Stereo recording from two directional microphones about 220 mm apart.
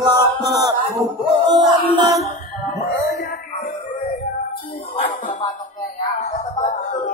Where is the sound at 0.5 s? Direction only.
15° right (ahead or behind).